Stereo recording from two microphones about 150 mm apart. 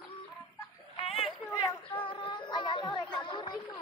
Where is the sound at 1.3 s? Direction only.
5° right (ahead or behind).